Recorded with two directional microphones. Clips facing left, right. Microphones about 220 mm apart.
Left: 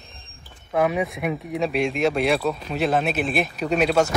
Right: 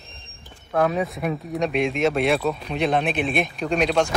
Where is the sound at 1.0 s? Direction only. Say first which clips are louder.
Even; centre (ahead or behind).